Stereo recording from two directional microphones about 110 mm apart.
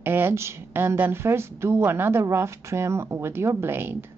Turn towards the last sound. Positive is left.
turn(degrees=-20)  # may be behind; listen again after turning